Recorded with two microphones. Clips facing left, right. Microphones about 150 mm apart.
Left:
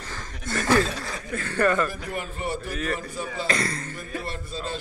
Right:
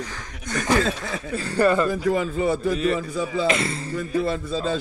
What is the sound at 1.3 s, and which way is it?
Speech, 35° right (ahead or behind).